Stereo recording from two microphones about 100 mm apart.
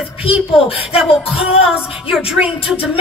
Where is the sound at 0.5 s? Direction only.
70° left (ahead or behind).